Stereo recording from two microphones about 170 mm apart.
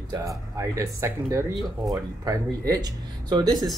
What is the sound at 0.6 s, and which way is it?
Speech, 15° right (ahead or behind).